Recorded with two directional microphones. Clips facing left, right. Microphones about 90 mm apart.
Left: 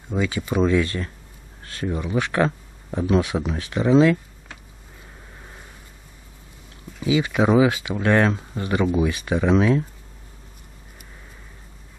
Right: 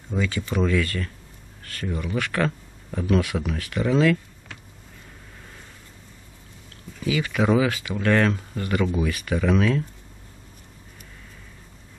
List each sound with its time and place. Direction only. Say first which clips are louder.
0.1 s speech: left 3 dB; 15° left (ahead or behind)
7.0 s speech: left 4 dB; 20° left (ahead or behind)